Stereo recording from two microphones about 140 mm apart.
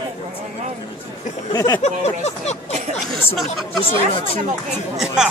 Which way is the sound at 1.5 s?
25° left (ahead or behind).